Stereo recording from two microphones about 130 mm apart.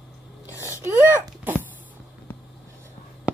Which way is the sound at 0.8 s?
20° right (ahead or behind).